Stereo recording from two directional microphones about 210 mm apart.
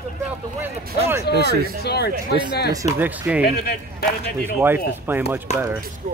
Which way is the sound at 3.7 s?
50° left (ahead or behind).